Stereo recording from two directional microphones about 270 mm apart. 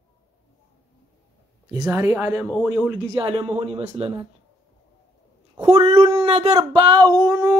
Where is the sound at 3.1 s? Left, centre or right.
Centre.